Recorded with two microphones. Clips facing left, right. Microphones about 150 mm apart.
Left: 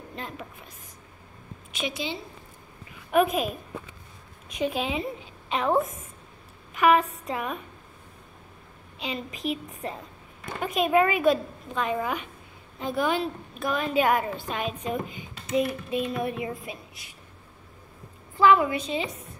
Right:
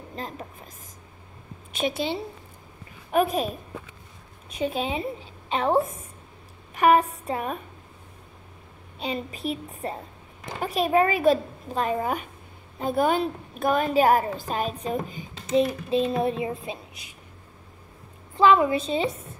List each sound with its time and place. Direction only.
0.1 s a woman's voice: 40° right (ahead or behind)
1.8 s a woman's voice: 55° right (ahead or behind)
3.1 s a woman's voice: 35° right (ahead or behind)
9.0 s a woman's voice: 35° right (ahead or behind)
18.4 s a child's voice: 25° right (ahead or behind)